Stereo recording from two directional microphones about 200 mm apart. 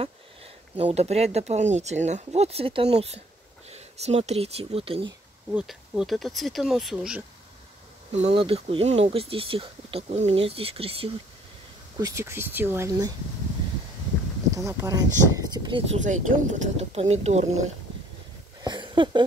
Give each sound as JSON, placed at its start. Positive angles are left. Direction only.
{"t": 0.7, "sound": "speech", "side_deg": -30}
{"t": 5.5, "sound": "speech", "side_deg": -5}
{"t": 8.1, "sound": "speech", "side_deg": -35}
{"t": 12.0, "sound": "speech", "side_deg": -15}
{"t": 14.5, "sound": "speech", "side_deg": -15}
{"t": 15.9, "sound": "speech", "side_deg": -40}
{"t": 18.6, "sound": "a sound", "side_deg": -20}